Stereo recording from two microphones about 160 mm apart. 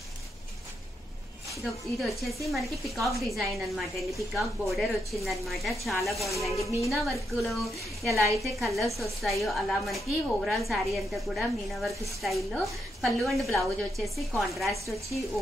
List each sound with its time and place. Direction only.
1.6 s a woman's voice: centre (ahead or behind)